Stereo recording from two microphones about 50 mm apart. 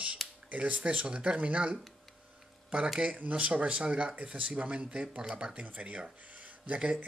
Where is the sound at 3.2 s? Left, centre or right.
Right.